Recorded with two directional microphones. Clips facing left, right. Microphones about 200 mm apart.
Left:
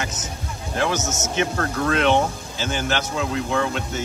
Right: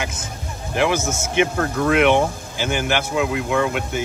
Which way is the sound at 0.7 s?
10° right (ahead or behind).